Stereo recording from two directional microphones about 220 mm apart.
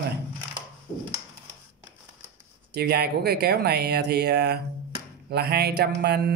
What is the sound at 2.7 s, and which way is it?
Speech, 50° right (ahead or behind).